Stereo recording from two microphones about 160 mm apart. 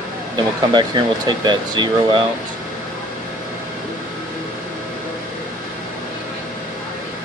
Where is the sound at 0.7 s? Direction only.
30° right (ahead or behind).